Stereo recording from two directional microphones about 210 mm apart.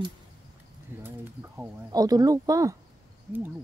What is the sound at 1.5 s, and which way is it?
Speech, 15° right (ahead or behind).